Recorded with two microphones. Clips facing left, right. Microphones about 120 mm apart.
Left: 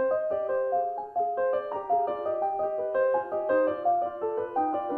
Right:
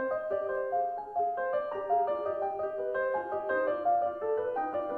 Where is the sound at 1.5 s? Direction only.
40° left (ahead or behind).